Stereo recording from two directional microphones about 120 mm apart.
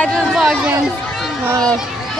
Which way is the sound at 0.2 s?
5° right (ahead or behind).